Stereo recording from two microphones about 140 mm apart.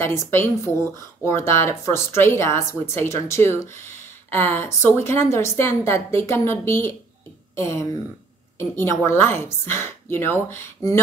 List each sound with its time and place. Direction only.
0.0 s speech: 20° left (ahead or behind)